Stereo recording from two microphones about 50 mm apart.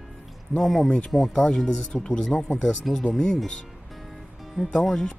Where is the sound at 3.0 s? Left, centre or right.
Left.